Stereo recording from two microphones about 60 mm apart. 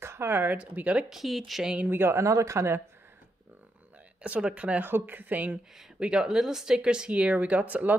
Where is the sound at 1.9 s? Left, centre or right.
Right.